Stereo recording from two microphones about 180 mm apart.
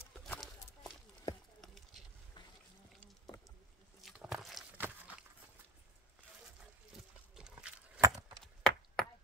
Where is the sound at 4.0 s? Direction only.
Centre (ahead or behind).